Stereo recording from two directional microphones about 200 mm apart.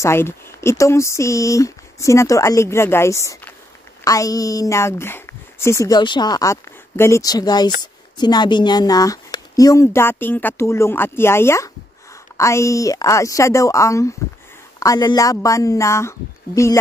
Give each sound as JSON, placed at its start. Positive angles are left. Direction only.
{"t": 0.0, "sound": "speech", "side_deg": 15}